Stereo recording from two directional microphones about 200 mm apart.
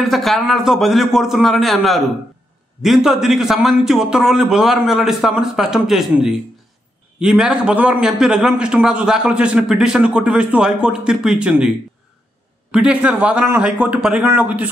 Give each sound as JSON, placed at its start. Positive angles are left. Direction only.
{"t": 0.0, "sound": "a man's voice", "side_deg": 0}
{"t": 12.7, "sound": "a man's voice", "side_deg": -5}